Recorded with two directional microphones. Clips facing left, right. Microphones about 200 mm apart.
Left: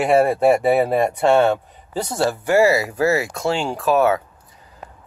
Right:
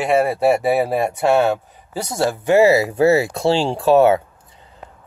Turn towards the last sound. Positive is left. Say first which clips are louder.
# right 4 dB
turn(degrees=-25)  # may be behind; listen again after turning